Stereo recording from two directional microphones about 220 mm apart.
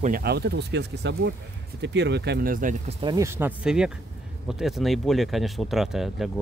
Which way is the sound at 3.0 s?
15° right (ahead or behind).